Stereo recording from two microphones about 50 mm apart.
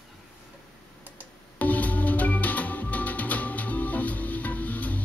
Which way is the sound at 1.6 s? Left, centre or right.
Left.